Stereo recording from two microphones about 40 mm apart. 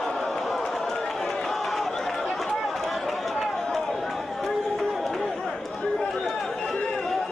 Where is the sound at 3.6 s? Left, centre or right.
Centre.